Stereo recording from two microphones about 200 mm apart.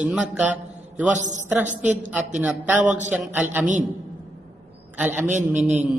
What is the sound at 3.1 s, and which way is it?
Speech, 10° right (ahead or behind).